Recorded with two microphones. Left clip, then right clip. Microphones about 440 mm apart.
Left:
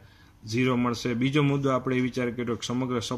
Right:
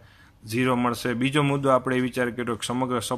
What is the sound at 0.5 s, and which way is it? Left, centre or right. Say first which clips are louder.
Speech: right 3 dB; centre.